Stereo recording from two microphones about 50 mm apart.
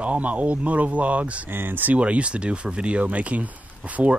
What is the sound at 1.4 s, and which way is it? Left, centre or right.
Speech, right.